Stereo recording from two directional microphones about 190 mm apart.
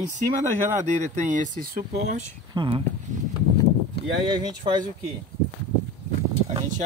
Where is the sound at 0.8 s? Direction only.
40° right (ahead or behind).